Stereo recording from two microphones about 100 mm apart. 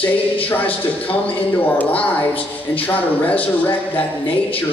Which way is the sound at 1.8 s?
15° left (ahead or behind).